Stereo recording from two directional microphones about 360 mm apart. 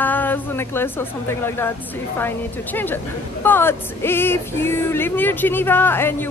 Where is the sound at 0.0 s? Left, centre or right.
Centre.